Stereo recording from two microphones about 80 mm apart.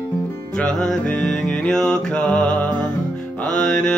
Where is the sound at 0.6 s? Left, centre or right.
Centre.